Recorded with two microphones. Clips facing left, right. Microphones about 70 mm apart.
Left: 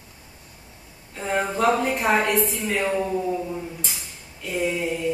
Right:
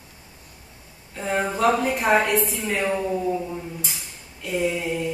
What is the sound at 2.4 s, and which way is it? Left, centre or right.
Speech, centre.